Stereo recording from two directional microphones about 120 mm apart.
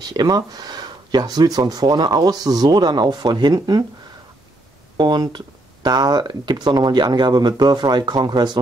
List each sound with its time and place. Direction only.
0.0 s speech: 35° right (ahead or behind)
4.9 s speech: 35° right (ahead or behind)